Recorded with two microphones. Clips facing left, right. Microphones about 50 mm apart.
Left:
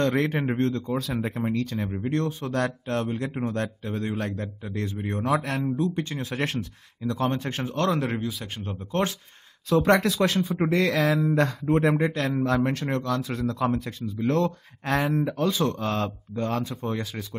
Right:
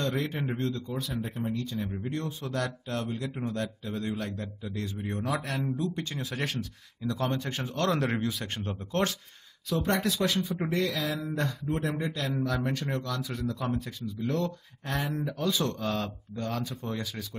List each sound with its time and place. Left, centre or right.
0.0 s speech: left
0.9 s speech: left
2.0 s speech: left
7.9 s speech: centre
9.8 s speech: left
10.0 s speech: left
10.8 s speech: left
11.9 s speech: left
15.3 s speech: left